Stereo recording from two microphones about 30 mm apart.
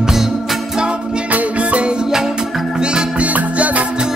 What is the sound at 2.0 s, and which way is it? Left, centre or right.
Music, centre.